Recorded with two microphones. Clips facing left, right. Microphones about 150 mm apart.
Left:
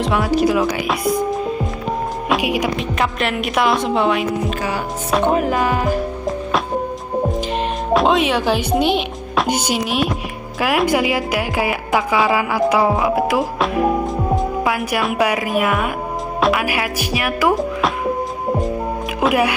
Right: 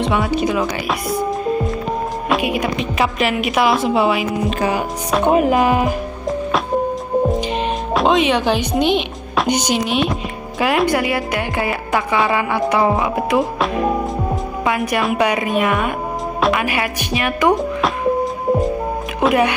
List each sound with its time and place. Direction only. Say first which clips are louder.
0.0 s speech: left 1 dB; centre (ahead or behind)
2.4 s music: even; 10° left (ahead or behind)
3.0 s speech: right 4 dB; centre (ahead or behind)
4.5 s music: right 3 dB; 25° right (ahead or behind)
7.9 s speech: even; centre (ahead or behind)
19.1 s speech: right 1 dB; 5° left (ahead or behind)